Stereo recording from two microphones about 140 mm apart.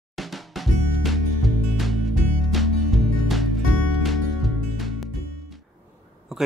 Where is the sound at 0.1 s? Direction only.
Centre (ahead or behind).